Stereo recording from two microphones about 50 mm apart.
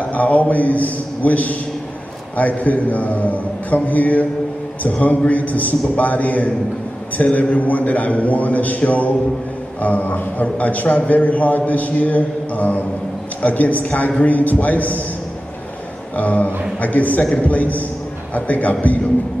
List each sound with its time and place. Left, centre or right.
0.1 s a man's voice: left
16.2 s a man's voice: left